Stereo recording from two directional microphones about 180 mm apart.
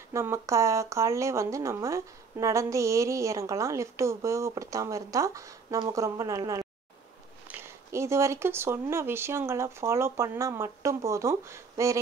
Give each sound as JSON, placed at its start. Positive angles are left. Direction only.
{"t": 0.1, "sound": "speech", "side_deg": -15}